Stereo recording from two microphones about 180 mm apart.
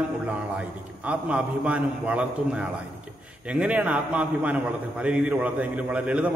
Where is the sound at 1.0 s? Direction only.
5° right (ahead or behind).